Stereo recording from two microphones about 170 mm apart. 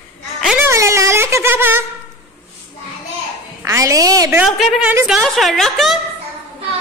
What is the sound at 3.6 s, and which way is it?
Speech, 20° right (ahead or behind).